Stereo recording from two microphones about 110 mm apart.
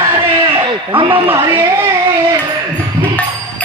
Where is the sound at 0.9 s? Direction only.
55° right (ahead or behind).